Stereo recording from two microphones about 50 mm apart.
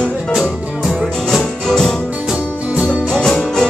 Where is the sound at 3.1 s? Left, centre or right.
Centre.